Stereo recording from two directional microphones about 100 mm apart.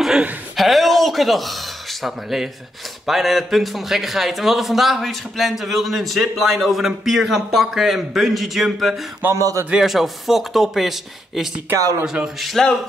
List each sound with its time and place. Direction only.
0.0 s a man's voice: 5° right (ahead or behind)
9.2 s speech: 30° right (ahead or behind)
9.7 s a man's voice: 5° right (ahead or behind)